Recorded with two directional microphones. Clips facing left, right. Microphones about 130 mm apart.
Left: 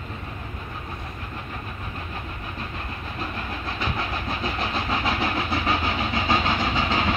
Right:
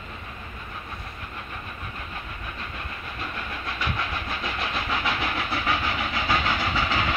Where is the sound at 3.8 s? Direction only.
30° left (ahead or behind).